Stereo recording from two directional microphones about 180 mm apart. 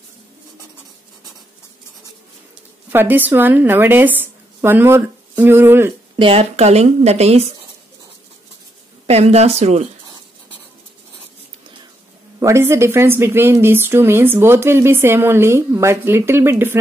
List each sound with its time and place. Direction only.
2.9 s a woman's voice: 10° right (ahead or behind)
6.1 s speech: 30° right (ahead or behind)
9.0 s speech: 35° right (ahead or behind)
12.4 s a woman's voice: 15° right (ahead or behind)